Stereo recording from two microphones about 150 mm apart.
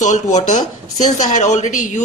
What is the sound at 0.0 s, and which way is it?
A woman's voice, 55° left (ahead or behind).